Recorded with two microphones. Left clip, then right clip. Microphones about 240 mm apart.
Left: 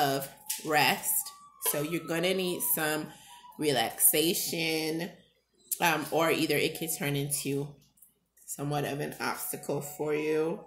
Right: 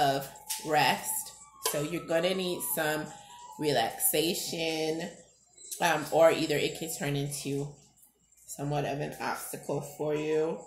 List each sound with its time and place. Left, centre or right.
0.7 s speech: left
8.5 s speech: left